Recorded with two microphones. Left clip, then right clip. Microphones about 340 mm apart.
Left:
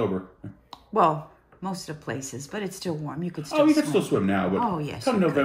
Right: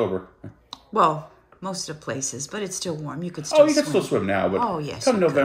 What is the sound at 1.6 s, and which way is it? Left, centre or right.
Speech, centre.